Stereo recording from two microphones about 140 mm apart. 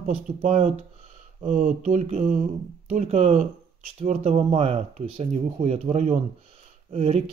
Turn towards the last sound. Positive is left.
turn(degrees=-50)  # may be behind; listen again after turning